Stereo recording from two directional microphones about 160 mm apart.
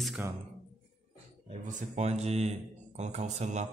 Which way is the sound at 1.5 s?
45° right (ahead or behind).